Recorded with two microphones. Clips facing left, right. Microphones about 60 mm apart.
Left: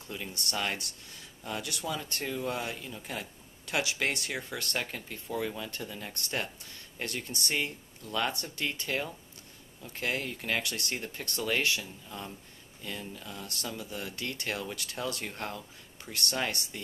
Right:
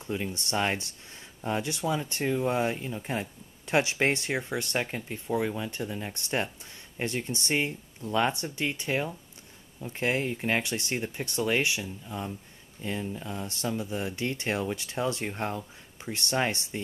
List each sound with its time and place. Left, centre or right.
0.0 s speech: right